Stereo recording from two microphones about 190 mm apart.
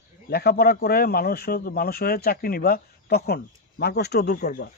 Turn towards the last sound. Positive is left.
turn(degrees=50)  # may be behind; listen again after turning